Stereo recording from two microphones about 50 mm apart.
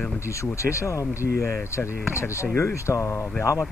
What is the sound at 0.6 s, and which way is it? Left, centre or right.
Speech, left.